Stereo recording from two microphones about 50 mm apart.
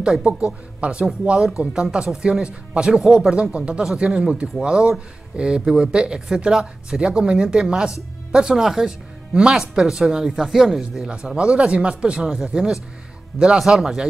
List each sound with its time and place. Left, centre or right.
0.0 s speech: centre
11.1 s speech: centre